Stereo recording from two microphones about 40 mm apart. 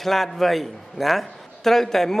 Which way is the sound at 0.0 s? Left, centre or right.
Centre.